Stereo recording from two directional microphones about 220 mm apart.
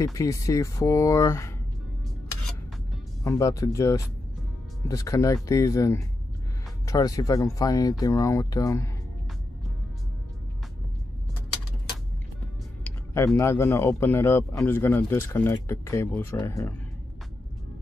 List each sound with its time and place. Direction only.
0.0 s speech: 15° left (ahead or behind)
3.3 s speech: 15° left (ahead or behind)
12.8 s a sound: 10° left (ahead or behind)
13.4 s speech: 10° left (ahead or behind)